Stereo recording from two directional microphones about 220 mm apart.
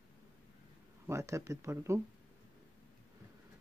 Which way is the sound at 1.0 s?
10° right (ahead or behind).